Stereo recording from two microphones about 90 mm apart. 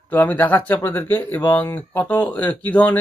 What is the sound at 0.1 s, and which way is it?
Speech, 20° left (ahead or behind).